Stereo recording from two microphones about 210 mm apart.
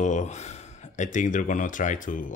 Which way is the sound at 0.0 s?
35° left (ahead or behind).